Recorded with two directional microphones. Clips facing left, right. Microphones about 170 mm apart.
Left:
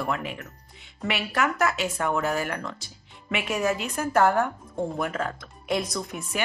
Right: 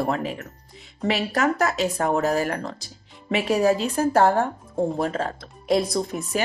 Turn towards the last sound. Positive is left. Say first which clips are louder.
# right 6 dB
turn(degrees=-35)  # may be behind; listen again after turning